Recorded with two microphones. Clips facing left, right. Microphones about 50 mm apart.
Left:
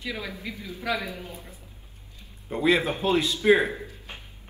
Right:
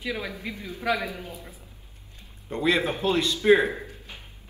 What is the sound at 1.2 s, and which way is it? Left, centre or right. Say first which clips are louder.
Speech: right 1 dB; right.